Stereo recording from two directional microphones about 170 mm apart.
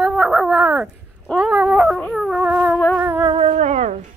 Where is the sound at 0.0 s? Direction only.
Centre (ahead or behind).